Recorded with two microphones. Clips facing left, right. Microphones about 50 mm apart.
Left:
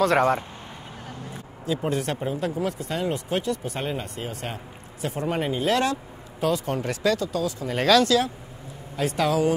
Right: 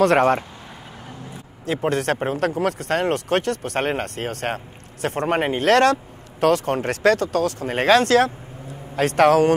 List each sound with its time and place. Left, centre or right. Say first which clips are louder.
0.0 s speech: right 4 dB; right
1.9 s speech: right 7 dB; right